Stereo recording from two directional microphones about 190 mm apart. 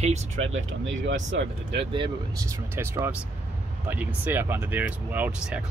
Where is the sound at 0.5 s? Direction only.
80° right.